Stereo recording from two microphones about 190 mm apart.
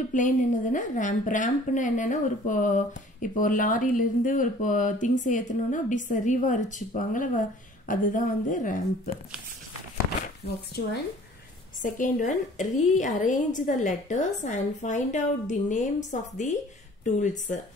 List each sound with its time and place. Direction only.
0.1 s a woman's voice: 40° left (ahead or behind)
11.8 s a woman's voice: 45° left (ahead or behind)